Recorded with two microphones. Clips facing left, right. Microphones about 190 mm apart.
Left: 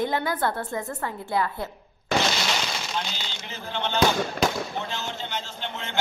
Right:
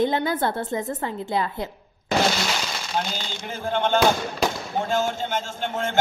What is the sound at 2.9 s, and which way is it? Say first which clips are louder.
Speech: right 4 dB; 50° right (ahead or behind).